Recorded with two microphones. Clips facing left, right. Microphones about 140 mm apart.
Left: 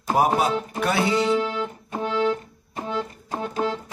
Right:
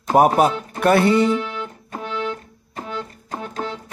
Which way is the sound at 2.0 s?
30° left (ahead or behind).